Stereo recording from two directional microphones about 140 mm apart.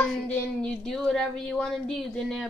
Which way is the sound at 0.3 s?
5° left (ahead or behind).